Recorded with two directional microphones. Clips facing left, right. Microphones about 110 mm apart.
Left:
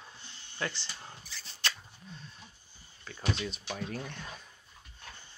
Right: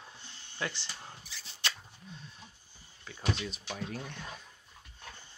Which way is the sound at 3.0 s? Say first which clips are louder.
Left 1 dB; 15° right (ahead or behind).